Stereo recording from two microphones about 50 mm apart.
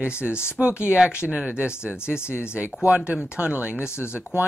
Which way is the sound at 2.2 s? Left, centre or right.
Left.